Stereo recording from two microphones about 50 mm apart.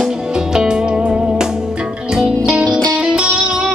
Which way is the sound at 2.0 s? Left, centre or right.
Centre.